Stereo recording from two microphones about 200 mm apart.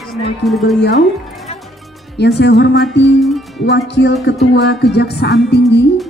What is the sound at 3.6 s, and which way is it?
Speech, 60° left (ahead or behind).